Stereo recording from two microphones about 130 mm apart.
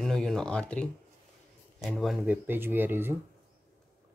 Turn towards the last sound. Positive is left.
turn(degrees=-15)  # may be behind; listen again after turning